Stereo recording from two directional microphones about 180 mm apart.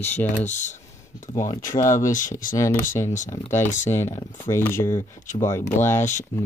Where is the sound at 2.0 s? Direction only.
45° left (ahead or behind).